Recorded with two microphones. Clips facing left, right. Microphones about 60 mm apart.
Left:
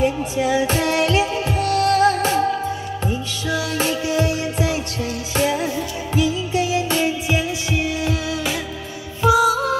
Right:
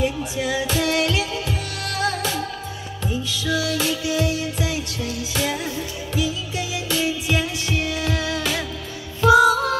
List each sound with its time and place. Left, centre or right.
0.0 s music: left
6.2 s music: left
7.2 s music: centre